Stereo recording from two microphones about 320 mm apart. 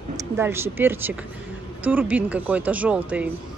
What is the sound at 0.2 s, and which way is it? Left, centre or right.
Speech, centre.